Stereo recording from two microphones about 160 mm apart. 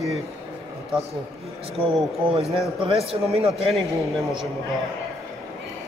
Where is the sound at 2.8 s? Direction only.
40° right (ahead or behind).